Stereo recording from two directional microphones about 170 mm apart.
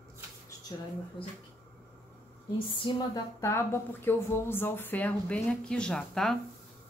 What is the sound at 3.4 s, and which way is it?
Speech, 15° left (ahead or behind).